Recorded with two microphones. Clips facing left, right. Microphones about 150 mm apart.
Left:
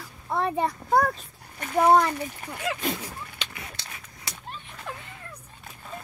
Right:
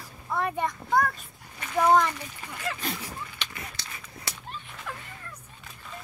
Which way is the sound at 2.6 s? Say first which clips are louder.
Left 4 dB; 20° left (ahead or behind).